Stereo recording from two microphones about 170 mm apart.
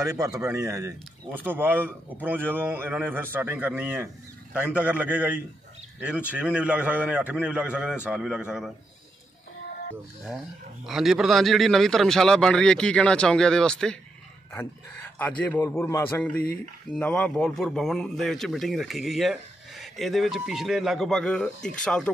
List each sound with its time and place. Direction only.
0.0 s a man's voice: 20° right (ahead or behind)
10.9 s a man's voice: centre (ahead or behind)
15.1 s a man's voice: 10° left (ahead or behind)